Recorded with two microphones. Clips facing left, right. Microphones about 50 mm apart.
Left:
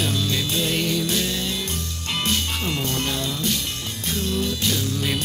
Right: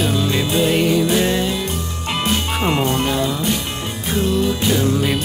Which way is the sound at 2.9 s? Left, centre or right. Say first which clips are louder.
Right 7 dB; centre.